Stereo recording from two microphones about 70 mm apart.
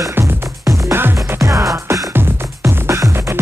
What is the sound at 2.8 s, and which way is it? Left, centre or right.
Music, right.